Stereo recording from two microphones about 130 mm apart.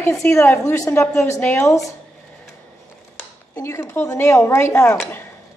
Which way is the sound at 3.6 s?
20° left (ahead or behind).